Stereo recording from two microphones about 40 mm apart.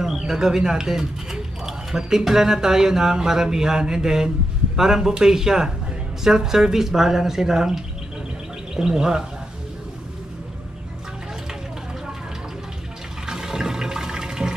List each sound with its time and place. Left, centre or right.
0.0 s speech: centre
13.3 s toilet flush: centre